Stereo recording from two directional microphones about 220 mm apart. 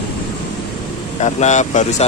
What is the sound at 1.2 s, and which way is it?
Speech, 30° left (ahead or behind).